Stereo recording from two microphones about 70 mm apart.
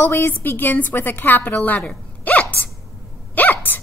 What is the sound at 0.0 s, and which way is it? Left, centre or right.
A woman's voice, left.